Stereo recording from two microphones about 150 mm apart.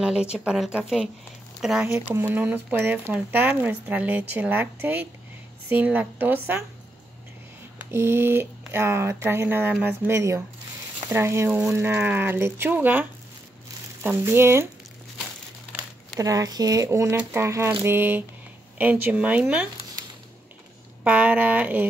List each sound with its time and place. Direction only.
0.0 s speech: 5° right (ahead or behind)
1.9 s speech: 15° right (ahead or behind)
7.9 s speech: 15° right (ahead or behind)
14.0 s speech: 15° right (ahead or behind)
16.2 s speech: 25° right (ahead or behind)
21.0 s speech: 10° right (ahead or behind)